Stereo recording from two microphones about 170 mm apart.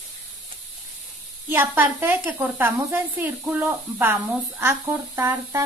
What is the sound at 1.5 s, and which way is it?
A woman's voice, 10° right (ahead or behind).